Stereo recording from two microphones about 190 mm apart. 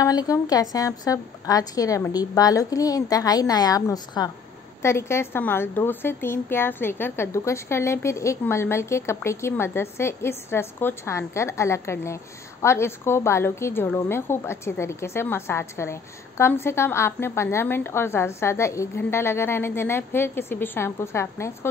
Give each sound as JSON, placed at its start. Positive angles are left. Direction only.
{"t": 0.0, "sound": "a woman's voice", "side_deg": 20}